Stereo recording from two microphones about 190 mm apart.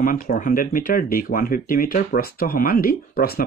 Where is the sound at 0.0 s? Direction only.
45° left (ahead or behind).